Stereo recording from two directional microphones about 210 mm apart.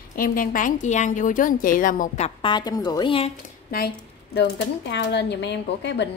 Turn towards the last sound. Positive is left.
turn(degrees=55)  # may be behind; listen again after turning